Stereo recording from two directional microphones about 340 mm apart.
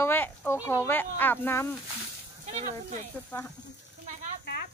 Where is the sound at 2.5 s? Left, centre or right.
Right.